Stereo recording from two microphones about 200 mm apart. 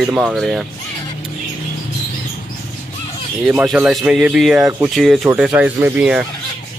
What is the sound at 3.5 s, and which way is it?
Speech, 5° right (ahead or behind).